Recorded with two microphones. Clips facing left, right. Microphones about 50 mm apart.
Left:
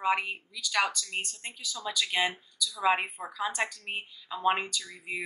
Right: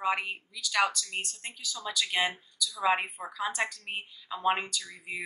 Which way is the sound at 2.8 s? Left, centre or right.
Centre.